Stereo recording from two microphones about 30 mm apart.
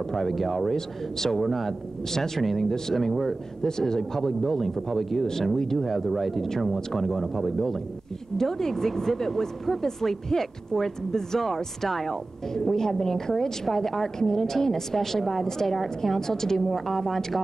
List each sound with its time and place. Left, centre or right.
0.1 s speech: centre
0.7 s a woman's voice: centre
1.4 s speech: centre
2.1 s a woman's voice: centre
3.6 s a woman's voice: centre
16.0 s a woman's voice: centre